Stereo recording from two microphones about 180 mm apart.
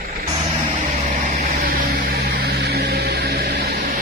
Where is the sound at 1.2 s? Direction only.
50° right (ahead or behind).